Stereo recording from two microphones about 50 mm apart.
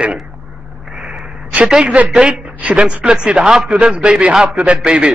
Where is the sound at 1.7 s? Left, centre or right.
Centre.